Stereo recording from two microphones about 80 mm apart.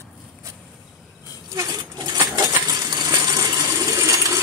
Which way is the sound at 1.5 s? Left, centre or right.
Right.